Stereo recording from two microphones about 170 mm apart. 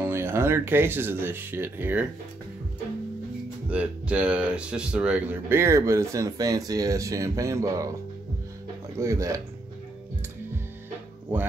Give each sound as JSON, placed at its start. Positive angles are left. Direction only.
{"t": 0.0, "sound": "speech", "side_deg": -15}
{"t": 3.7, "sound": "a man's voice", "side_deg": -5}
{"t": 8.9, "sound": "a man's voice", "side_deg": -20}